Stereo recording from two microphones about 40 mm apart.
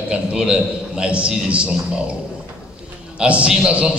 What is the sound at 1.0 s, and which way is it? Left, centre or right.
Speech, right.